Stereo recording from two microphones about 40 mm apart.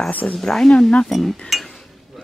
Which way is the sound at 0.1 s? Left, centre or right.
Left.